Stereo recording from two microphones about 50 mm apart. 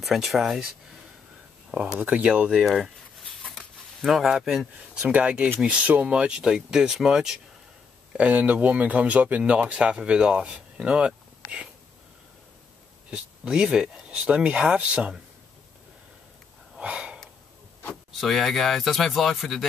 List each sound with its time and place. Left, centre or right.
0.0 s speech: centre
2.0 s speech: right
2.7 s a sound: centre
4.0 s speech: centre
5.2 s speech: right
8.3 s speech: right
13.1 s speech: centre
16.8 s sniff: centre
18.1 s speech: centre